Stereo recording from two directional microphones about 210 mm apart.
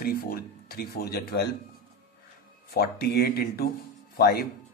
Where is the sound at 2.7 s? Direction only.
50° left (ahead or behind).